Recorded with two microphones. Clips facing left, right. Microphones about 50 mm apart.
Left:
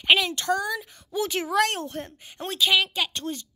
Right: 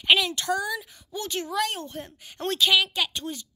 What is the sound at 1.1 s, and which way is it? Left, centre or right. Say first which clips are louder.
Speech: left 5 dB; left.